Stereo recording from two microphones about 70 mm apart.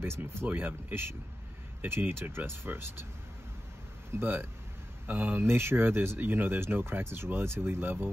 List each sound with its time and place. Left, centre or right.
0.0 s speech: right
4.2 s speech: right
5.4 s speech: right